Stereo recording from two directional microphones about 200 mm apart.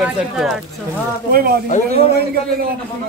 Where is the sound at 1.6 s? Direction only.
35° left (ahead or behind).